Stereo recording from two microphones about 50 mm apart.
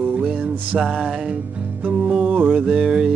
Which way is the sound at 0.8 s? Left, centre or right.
Centre.